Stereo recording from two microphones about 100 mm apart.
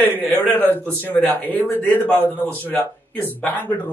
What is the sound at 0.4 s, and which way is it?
A man's voice, 20° left (ahead or behind).